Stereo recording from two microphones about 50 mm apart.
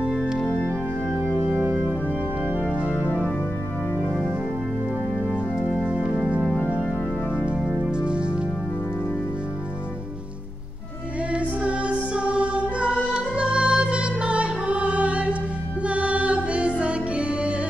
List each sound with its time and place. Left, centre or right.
5.7 s music: centre
7.8 s music: centre
11.3 s music: right